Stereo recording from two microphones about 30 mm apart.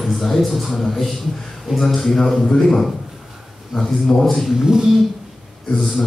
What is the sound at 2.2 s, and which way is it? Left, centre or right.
Speech, centre.